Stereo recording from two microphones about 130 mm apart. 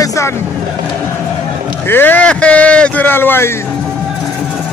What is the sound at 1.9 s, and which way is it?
Speech, 15° left (ahead or behind).